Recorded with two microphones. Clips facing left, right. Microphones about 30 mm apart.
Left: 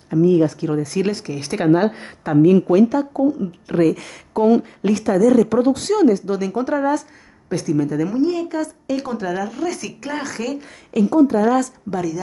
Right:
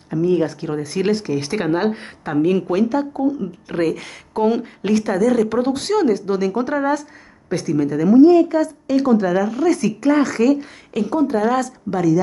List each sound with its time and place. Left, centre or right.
0.3 s speech: right